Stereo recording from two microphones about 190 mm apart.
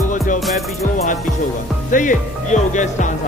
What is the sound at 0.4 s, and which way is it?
Music, centre (ahead or behind).